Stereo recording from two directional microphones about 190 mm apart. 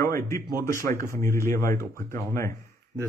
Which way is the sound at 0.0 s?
15° left (ahead or behind).